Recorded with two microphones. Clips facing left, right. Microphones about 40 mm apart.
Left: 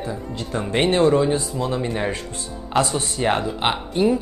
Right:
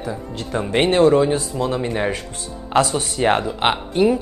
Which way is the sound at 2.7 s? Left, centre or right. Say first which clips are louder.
Right 3 dB; right.